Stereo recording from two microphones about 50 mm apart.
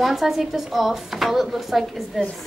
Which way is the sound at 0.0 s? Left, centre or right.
Centre.